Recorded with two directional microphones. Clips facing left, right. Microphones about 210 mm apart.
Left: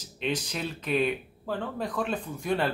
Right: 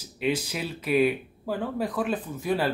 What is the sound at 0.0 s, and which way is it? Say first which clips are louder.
Speech: right 4 dB; 10° right (ahead or behind).